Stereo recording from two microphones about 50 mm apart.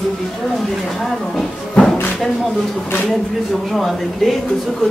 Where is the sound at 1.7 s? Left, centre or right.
Centre.